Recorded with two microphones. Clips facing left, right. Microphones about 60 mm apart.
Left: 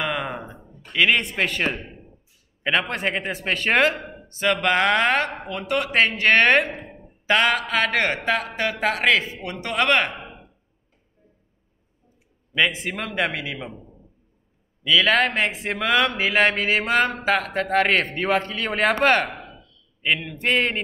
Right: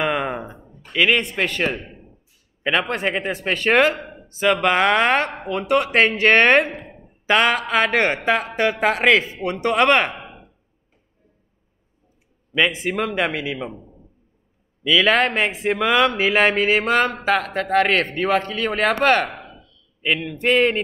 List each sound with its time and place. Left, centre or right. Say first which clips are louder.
0.0 s a sound: right 4 dB; centre
0.5 s a man's voice: right 1 dB; centre
12.5 s speech: right 3 dB; centre
14.8 s speech: right 2 dB; centre